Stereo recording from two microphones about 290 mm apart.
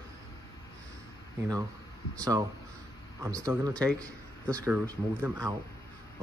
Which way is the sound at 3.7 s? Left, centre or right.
Centre.